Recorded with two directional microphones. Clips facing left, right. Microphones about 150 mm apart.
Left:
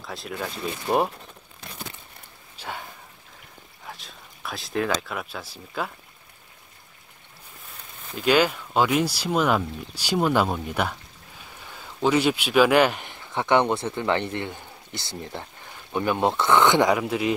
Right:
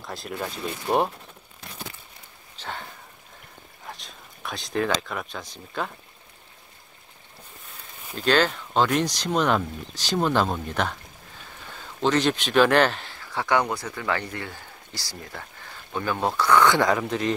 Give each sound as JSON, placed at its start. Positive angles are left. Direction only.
{"t": 0.0, "sound": "speech", "side_deg": 0}
{"t": 2.5, "sound": "a sound", "side_deg": 10}
{"t": 3.8, "sound": "speech", "side_deg": 0}
{"t": 8.2, "sound": "speech", "side_deg": 10}